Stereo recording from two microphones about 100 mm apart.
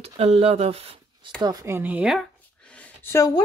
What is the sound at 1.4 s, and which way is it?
Speech, 40° right (ahead or behind).